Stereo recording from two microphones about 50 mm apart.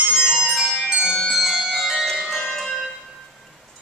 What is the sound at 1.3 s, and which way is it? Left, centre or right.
Music, centre.